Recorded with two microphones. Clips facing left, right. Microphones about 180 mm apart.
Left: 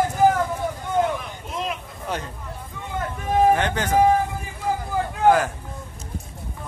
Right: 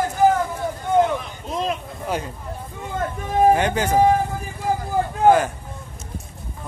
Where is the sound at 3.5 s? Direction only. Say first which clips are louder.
Right 3 dB; 10° right (ahead or behind).